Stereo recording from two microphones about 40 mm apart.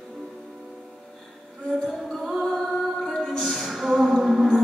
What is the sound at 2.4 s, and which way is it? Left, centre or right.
Music, centre.